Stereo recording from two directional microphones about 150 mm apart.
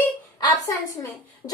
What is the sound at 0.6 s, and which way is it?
Speech, 20° left (ahead or behind).